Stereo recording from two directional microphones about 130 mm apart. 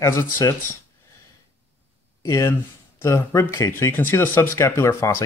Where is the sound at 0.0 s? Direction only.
20° left (ahead or behind).